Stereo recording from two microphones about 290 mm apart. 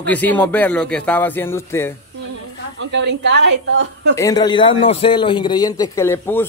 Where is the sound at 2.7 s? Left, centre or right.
Right.